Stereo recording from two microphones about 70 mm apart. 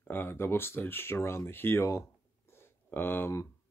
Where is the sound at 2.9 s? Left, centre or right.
Left.